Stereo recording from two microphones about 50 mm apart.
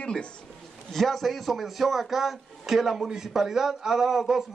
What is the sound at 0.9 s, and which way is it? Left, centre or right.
A man's voice, centre.